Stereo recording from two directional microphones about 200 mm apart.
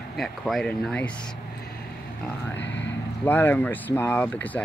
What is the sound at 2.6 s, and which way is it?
Speech, 60° left (ahead or behind).